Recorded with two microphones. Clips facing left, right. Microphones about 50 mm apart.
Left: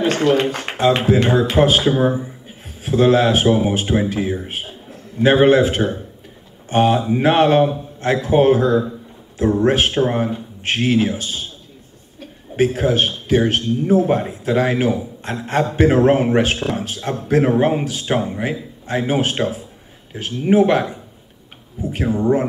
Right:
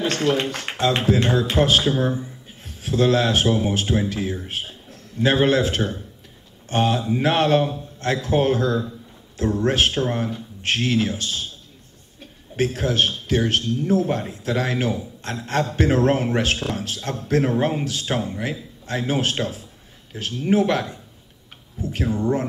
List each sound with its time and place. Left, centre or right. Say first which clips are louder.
0.0 s a man's voice: left 5 dB; centre
12.5 s a man's voice: left 5 dB; left